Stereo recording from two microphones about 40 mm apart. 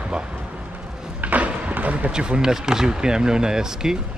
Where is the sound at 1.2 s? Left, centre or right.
Right.